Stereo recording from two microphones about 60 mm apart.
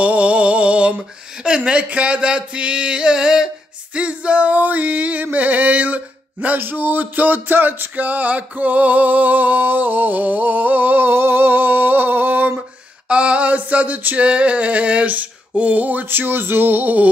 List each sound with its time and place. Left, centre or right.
0.0 s speech: right
3.9 s music: centre
13.1 s music: centre